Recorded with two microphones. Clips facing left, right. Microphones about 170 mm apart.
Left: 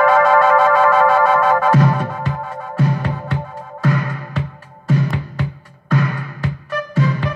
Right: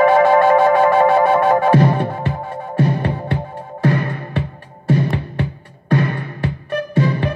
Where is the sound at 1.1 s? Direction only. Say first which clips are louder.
Right 1 dB; 25° right (ahead or behind).